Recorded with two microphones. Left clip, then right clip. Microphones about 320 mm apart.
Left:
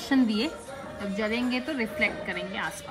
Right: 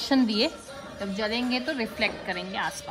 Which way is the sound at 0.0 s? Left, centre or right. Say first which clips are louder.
Right 1 dB; right.